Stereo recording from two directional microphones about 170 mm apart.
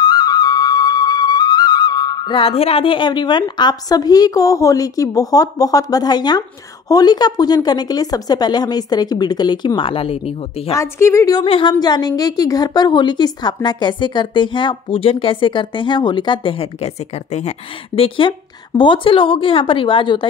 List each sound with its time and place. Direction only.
0.0 s music: 25° left (ahead or behind)
6.9 s a woman's voice: 25° left (ahead or behind)
10.7 s a woman's voice: 15° left (ahead or behind)
11.4 s a woman's voice: 35° left (ahead or behind)